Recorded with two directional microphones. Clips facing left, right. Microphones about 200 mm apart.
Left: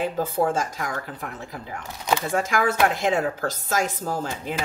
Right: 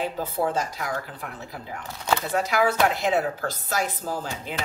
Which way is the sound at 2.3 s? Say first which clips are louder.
Right 2 dB; 45° left (ahead or behind).